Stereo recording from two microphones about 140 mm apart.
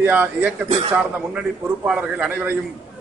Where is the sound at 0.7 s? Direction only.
45° right (ahead or behind).